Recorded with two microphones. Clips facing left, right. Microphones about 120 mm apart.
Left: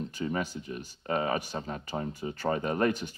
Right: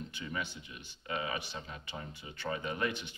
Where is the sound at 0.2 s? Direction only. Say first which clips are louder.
Left 8 dB; 40° left (ahead or behind).